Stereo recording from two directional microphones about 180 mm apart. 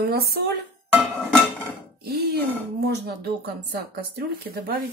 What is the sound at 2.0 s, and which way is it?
Throat clearing, 60° right (ahead or behind).